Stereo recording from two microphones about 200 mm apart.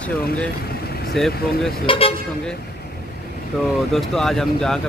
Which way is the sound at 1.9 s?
30° left (ahead or behind).